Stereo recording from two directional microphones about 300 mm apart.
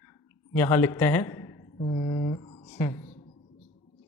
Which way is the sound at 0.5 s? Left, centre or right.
Centre.